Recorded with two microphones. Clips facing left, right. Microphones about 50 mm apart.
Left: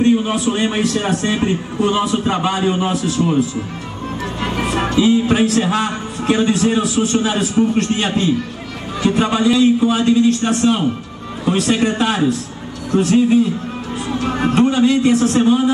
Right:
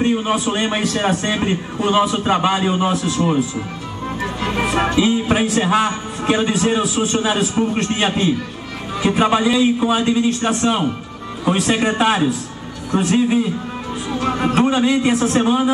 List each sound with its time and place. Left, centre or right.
0.0 s a sound: centre
0.6 s a man's voice: centre
2.7 s a man's voice: centre
4.6 s a man's voice: centre
7.0 s a man's voice: centre
7.3 s a man's voice: centre